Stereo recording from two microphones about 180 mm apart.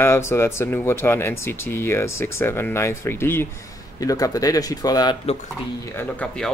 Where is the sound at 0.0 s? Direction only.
15° left (ahead or behind).